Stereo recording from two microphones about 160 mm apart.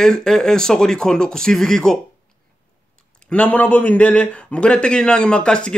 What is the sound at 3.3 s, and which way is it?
Speech, 5° left (ahead or behind).